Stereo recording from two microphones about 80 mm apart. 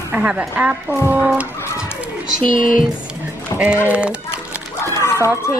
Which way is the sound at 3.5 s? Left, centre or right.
Left.